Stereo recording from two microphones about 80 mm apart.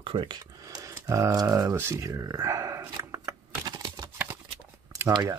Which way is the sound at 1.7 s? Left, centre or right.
Right.